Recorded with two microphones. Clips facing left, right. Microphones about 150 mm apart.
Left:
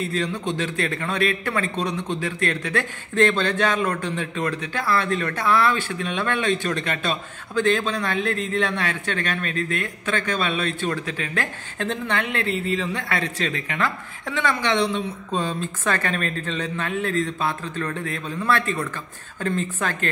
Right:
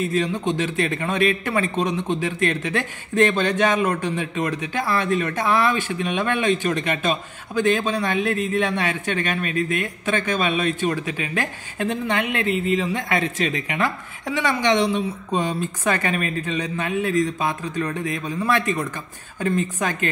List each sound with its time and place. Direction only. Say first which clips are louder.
0.0 s a man's voice: right 3 dB; 20° right (ahead or behind)